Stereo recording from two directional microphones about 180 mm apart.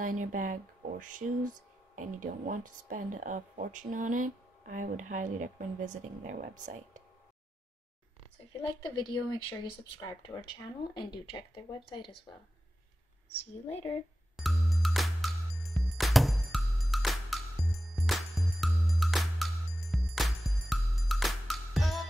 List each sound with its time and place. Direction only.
0.0 s speech: 45° right (ahead or behind)
8.5 s speech: 25° left (ahead or behind)
13.3 s speech: 35° left (ahead or behind)
14.3 s music: centre (ahead or behind)